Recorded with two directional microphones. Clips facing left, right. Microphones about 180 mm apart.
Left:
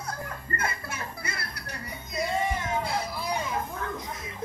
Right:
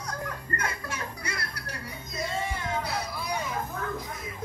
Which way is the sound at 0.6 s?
5° left (ahead or behind).